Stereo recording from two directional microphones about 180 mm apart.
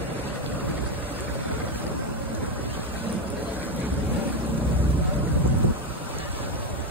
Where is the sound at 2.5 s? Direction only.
10° right (ahead or behind).